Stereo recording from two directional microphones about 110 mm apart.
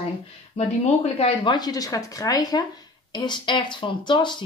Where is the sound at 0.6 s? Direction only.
80° left.